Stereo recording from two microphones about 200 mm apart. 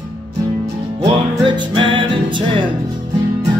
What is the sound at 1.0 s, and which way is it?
Music, 25° right (ahead or behind).